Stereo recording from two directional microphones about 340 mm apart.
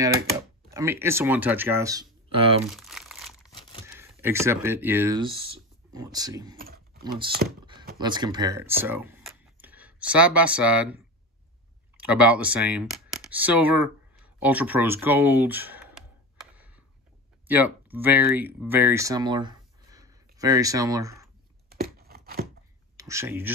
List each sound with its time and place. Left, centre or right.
0.7 s speech: centre
2.7 s crumpling: centre
3.4 s a sound: centre
3.8 s speech: centre
6.6 s typing: right
7.4 s speech: right
8.0 s speech: centre
12.0 s speech: centre
16.5 s a sound: centre
17.5 s speech: centre
21.6 s a sound: right
22.9 s speech: centre